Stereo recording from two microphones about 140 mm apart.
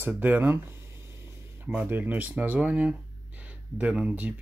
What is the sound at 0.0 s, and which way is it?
Speech, 15° right (ahead or behind).